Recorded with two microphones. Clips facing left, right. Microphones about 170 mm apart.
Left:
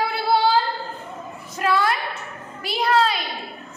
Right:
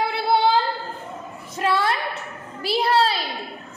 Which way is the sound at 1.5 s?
30° right (ahead or behind).